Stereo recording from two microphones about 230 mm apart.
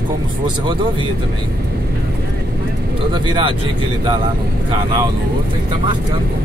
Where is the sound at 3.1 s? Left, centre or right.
Right.